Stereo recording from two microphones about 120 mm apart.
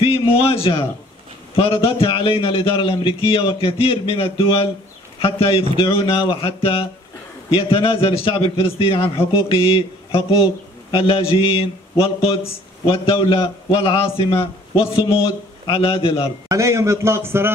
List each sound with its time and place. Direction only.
0.0 s a man's voice: 50° left (ahead or behind)
16.4 s a man's voice: 25° right (ahead or behind)